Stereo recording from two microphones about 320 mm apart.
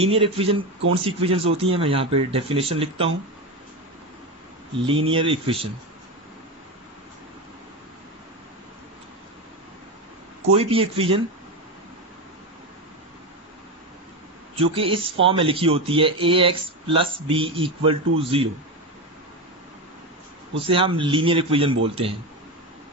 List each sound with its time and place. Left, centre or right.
0.0 s speech: centre
4.7 s speech: centre
10.5 s speech: centre
14.5 s speech: centre
20.5 s speech: centre